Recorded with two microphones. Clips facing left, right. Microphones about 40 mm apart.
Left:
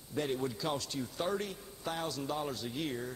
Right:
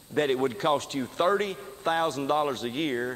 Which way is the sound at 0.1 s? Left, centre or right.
Right.